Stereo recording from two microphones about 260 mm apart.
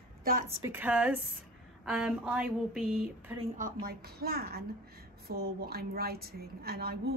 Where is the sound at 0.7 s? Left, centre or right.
Centre.